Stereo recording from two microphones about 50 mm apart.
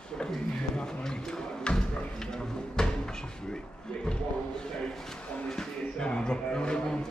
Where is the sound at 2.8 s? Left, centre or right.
Centre.